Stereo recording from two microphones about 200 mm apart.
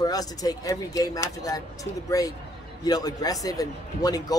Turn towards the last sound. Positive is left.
turn(degrees=20)  # may be behind; listen again after turning